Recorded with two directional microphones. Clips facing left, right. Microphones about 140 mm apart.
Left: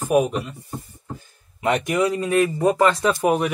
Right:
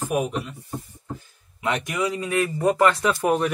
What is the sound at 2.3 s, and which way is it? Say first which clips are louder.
Speech: left 1 dB; 20° left (ahead or behind).